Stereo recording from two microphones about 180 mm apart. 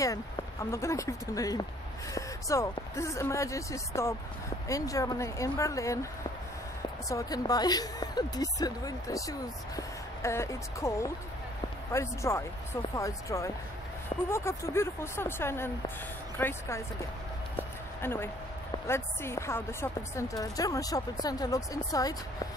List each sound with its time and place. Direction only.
0.0 s speech: 15° left (ahead or behind)
7.1 s a woman's voice: 20° left (ahead or behind)
17.6 s a sound: 15° left (ahead or behind)
18.9 s a woman's voice: 15° left (ahead or behind)